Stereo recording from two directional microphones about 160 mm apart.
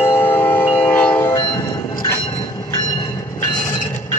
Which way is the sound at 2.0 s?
15° left (ahead or behind).